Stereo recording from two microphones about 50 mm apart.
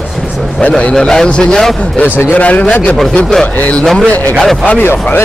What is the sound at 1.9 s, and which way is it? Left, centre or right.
Speech, left.